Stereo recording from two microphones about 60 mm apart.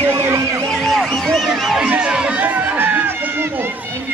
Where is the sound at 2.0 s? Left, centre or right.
Centre.